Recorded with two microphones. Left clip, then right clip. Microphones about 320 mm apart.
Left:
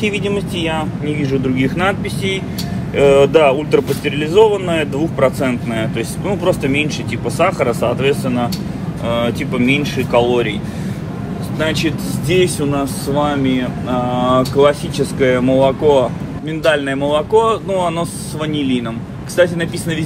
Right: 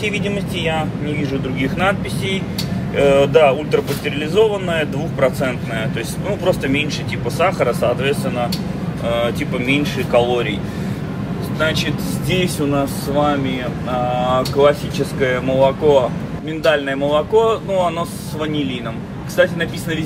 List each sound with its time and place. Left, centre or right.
1.0 s speech: left
11.6 s speech: left